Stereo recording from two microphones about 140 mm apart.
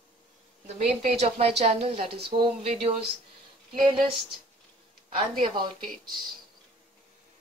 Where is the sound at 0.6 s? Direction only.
50° right (ahead or behind).